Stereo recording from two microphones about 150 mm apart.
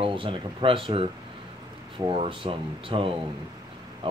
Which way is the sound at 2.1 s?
35° right (ahead or behind).